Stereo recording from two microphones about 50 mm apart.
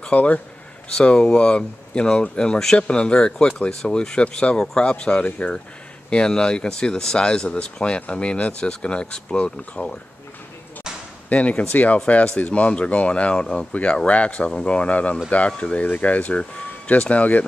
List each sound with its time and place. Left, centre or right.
0.0 s speech: left
0.9 s speech: centre
11.2 s speech: left